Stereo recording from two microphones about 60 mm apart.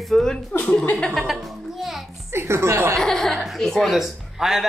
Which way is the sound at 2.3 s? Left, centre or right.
Right.